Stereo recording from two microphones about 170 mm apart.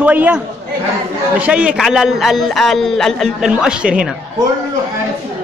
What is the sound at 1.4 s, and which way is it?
A man's voice, 5° right (ahead or behind).